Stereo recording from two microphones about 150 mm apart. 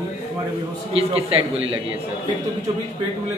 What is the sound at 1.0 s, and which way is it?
Speech, 40° right (ahead or behind).